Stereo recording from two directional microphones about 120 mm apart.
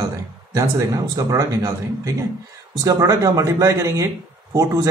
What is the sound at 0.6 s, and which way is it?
Speech, 30° right (ahead or behind).